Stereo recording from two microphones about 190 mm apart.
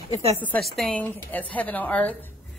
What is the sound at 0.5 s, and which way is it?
A woman's voice, centre (ahead or behind).